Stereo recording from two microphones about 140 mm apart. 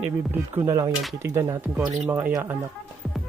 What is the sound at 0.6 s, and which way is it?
Speech, 25° right (ahead or behind).